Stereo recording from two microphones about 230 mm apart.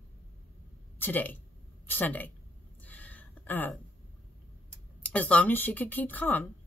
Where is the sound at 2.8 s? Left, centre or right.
Centre.